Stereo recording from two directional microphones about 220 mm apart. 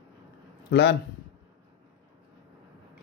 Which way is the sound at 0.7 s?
55° left (ahead or behind).